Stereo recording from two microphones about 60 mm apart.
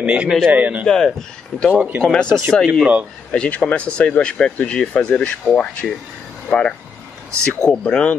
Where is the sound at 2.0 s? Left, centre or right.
Centre.